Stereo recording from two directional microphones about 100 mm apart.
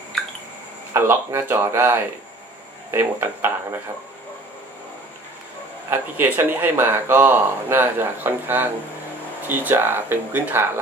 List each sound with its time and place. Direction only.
0.9 s speech: 25° right (ahead or behind)
5.9 s speech: 20° right (ahead or behind)